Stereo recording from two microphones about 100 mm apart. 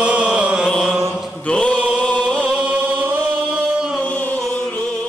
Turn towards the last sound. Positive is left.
turn(degrees=15)  # may be behind; listen again after turning